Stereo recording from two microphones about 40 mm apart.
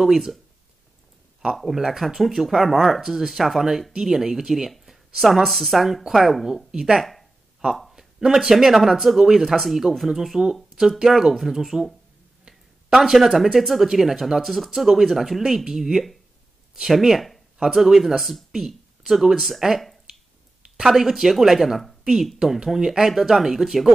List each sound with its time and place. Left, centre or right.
0.0 s speech: centre
1.5 s speech: centre
6.7 s speech: centre
7.0 s a sound: centre
7.9 s speech: centre
17.6 s speech: centre
19.6 s speech: centre
20.8 s speech: centre